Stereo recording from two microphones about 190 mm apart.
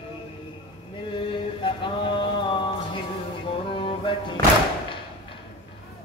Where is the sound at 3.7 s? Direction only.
25° left (ahead or behind).